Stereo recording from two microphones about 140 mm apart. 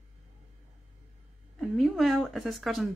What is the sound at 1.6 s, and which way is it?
Speech, centre (ahead or behind).